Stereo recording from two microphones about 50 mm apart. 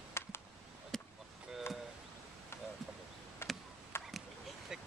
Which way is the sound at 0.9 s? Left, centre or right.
Centre.